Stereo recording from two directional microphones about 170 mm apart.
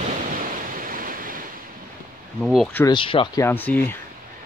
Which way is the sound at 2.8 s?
30° left (ahead or behind).